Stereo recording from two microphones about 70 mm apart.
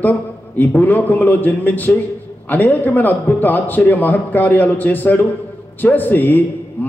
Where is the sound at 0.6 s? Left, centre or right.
Left.